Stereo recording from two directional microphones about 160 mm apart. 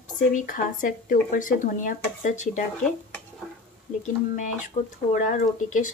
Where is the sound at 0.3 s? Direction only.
55° left (ahead or behind).